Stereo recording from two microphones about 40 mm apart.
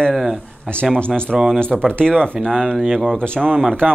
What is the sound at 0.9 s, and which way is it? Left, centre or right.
Speech, left.